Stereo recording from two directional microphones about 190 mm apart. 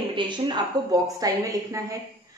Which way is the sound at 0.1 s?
25° right (ahead or behind).